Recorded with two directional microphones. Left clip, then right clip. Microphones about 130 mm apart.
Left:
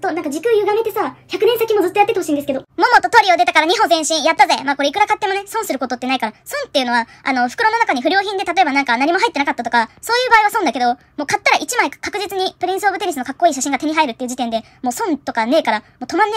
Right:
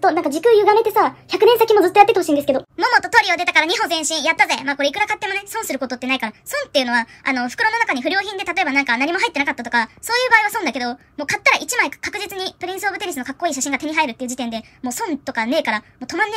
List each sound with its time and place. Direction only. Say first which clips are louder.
0.0 s speech: right 4 dB; 40° right (ahead or behind)
2.8 s a woman's voice: left 5 dB; 15° left (ahead or behind)